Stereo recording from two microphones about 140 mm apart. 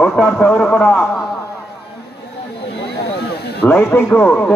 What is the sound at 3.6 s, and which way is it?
Speech, 15° left (ahead or behind).